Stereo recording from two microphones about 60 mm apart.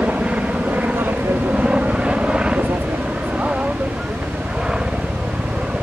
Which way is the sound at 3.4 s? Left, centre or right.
Centre.